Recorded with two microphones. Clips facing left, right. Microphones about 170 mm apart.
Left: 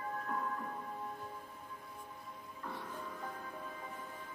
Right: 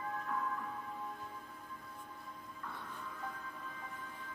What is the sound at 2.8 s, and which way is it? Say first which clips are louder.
Music: left 2 dB; 45° left (ahead or behind).